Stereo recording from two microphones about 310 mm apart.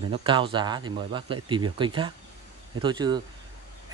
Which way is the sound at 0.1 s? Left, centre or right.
Centre.